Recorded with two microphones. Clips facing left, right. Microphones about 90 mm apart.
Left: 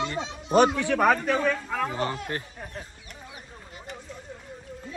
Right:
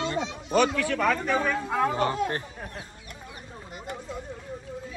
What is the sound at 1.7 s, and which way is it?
Speech, 30° right (ahead or behind).